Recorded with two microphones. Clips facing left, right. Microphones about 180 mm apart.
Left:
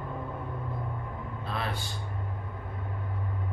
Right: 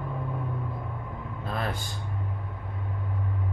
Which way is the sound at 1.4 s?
45° right (ahead or behind).